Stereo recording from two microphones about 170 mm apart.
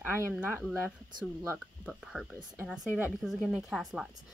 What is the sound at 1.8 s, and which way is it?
Speech, 5° right (ahead or behind).